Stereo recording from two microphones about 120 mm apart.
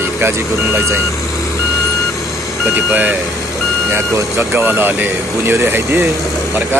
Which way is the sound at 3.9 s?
20° right (ahead or behind).